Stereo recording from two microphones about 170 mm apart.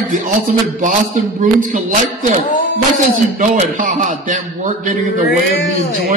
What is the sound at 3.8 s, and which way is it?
Speech, 50° right (ahead or behind).